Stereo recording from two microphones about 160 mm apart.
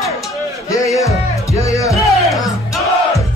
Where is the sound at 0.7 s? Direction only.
20° left (ahead or behind).